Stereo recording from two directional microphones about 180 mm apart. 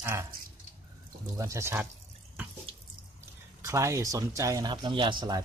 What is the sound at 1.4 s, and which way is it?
Speech, 15° right (ahead or behind).